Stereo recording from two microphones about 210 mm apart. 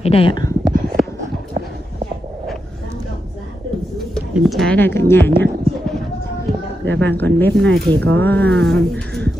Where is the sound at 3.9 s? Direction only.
Centre (ahead or behind).